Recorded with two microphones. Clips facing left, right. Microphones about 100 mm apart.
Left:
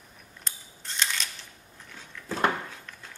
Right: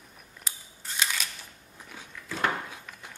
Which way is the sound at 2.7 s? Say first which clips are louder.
Right 1 dB; 15° right (ahead or behind).